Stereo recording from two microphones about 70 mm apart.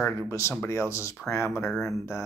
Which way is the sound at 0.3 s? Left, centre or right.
Left.